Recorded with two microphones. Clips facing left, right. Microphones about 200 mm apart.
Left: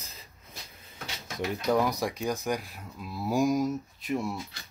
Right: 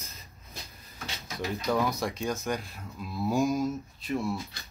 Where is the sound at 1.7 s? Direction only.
15° left (ahead or behind).